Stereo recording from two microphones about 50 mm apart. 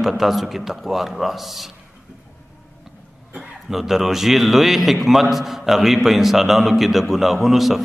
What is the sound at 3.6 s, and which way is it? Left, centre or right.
A man's voice, centre.